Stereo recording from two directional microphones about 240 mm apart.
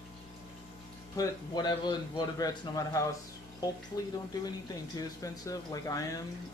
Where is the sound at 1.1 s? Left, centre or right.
Centre.